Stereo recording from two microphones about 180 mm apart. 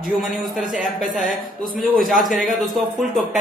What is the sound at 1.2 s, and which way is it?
Speech, 50° right (ahead or behind).